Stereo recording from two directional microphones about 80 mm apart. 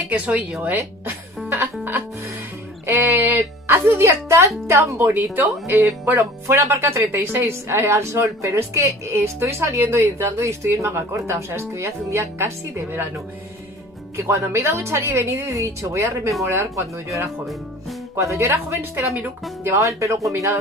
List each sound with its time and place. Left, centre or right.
0.1 s speech: centre
0.7 s music: right
2.9 s speech: right
4.9 s speech: right
14.1 s speech: right